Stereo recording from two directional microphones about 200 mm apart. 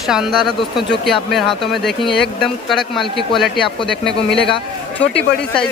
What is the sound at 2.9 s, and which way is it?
Speech, 25° left (ahead or behind).